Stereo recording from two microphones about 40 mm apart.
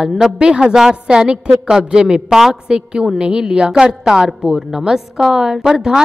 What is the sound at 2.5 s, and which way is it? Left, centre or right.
A woman's voice, right.